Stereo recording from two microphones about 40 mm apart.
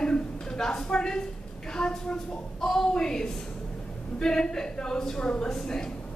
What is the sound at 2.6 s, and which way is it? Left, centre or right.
A woman's voice, centre.